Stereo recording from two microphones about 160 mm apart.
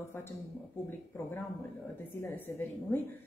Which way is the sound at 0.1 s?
15° left (ahead or behind).